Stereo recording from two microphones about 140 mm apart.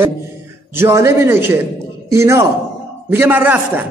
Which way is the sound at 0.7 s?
20° right (ahead or behind).